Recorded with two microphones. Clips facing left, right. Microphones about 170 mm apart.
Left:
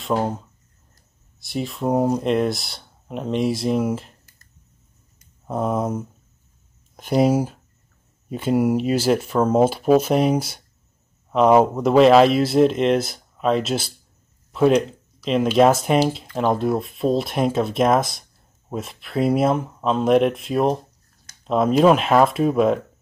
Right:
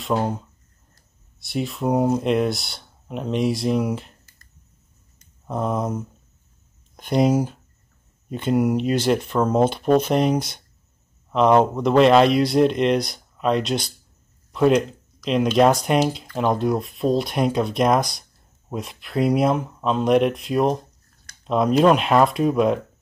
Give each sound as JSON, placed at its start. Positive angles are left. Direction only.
{"t": 0.0, "sound": "speech", "side_deg": 0}
{"t": 5.5, "sound": "speech", "side_deg": 5}